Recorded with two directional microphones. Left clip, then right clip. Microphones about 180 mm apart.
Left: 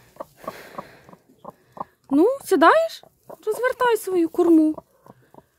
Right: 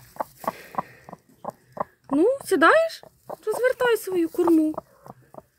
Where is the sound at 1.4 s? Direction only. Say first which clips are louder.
Right 4 dB; 40° right (ahead or behind).